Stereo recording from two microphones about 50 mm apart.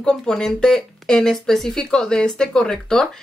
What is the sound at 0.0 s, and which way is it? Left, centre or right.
A woman's voice, centre.